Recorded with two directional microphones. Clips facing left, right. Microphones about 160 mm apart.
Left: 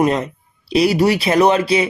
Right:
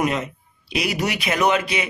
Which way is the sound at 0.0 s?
35° left (ahead or behind).